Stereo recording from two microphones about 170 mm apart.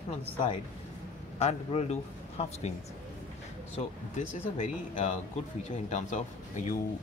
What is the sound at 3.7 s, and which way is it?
Speech, 45° left (ahead or behind).